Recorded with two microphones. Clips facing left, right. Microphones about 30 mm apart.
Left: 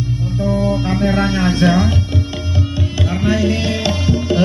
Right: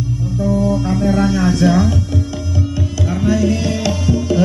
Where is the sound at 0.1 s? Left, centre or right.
Left.